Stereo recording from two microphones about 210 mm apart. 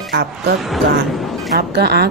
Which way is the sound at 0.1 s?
50° right (ahead or behind).